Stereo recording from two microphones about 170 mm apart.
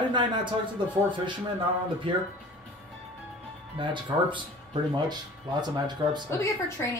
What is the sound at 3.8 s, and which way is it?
Speech, 30° right (ahead or behind).